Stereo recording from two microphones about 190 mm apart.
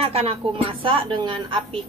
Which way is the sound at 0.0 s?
30° right (ahead or behind).